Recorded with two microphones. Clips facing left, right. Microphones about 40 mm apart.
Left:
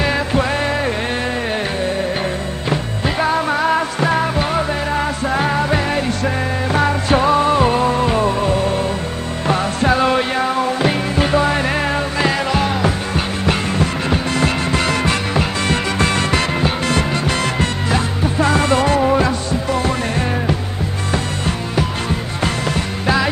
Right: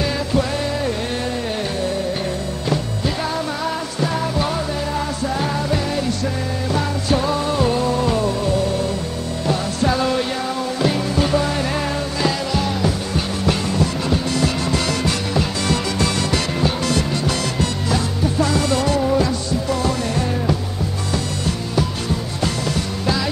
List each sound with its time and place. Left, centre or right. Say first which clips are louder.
0.0 s music: left 3 dB; left
2.7 s music: left 2 dB; left
23.0 s music: left 5 dB; left